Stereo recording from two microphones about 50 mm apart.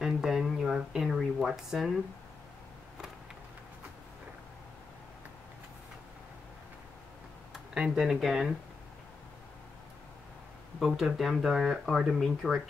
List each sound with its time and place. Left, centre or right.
0.0 s a sound: centre
1.0 s a sound: centre
1.5 s speech: centre
7.7 s speech: centre
8.1 s speech: centre
10.8 s speech: centre